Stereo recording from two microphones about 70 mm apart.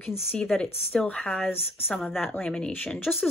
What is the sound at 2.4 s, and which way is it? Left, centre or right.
Speech, centre.